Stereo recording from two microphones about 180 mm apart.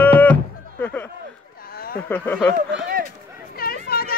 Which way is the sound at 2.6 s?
55° right (ahead or behind).